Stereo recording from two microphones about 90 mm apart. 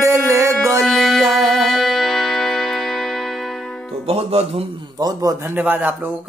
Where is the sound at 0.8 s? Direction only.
Centre (ahead or behind).